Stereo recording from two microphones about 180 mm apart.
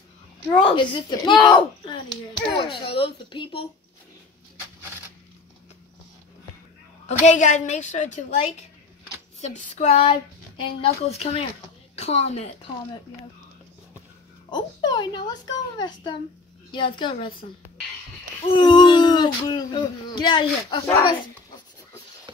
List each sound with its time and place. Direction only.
0.7 s speech: 25° left (ahead or behind)
7.1 s a woman's voice: 40° left (ahead or behind)
9.8 s a woman's voice: 40° left (ahead or behind)
14.5 s speech: 25° left (ahead or behind)
18.4 s speech: 25° left (ahead or behind)